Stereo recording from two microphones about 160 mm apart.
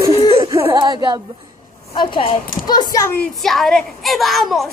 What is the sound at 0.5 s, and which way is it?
Speech, 20° right (ahead or behind).